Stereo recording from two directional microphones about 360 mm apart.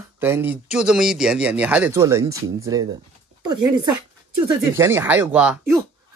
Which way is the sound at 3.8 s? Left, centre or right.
Right.